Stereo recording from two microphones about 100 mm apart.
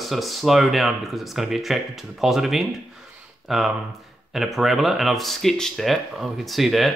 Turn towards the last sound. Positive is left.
turn(degrees=0)  # may be behind; listen again after turning